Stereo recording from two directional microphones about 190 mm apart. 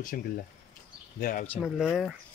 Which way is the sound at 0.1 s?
50° left (ahead or behind).